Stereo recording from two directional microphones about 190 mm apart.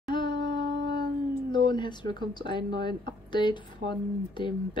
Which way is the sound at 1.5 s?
25° left (ahead or behind).